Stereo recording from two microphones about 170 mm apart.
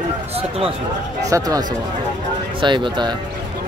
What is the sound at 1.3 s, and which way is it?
Speech, 20° right (ahead or behind).